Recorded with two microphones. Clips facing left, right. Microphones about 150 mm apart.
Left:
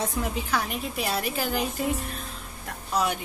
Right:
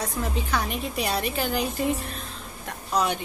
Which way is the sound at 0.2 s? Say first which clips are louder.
Right 3 dB; 5° left (ahead or behind).